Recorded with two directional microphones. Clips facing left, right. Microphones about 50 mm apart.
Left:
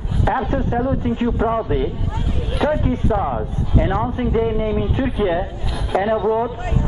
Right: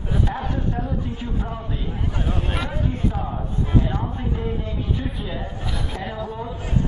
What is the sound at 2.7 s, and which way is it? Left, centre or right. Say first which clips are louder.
A man's voice: left 7 dB; left.